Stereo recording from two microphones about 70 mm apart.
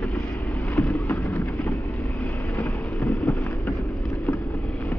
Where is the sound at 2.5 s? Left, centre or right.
Left.